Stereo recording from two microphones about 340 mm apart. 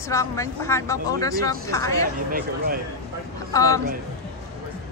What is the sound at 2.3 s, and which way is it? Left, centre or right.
Speech, right.